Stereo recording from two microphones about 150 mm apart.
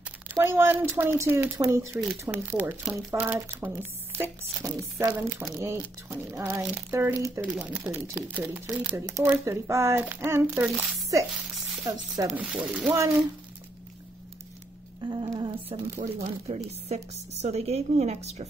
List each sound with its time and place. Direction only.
0.3 s speech: 15° right (ahead or behind)
12.4 s speech: 10° right (ahead or behind)
15.0 s speech: 25° right (ahead or behind)
16.0 s a woman's voice: 45° right (ahead or behind)